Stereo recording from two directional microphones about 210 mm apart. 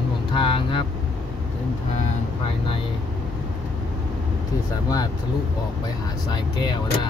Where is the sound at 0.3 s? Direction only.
25° left (ahead or behind).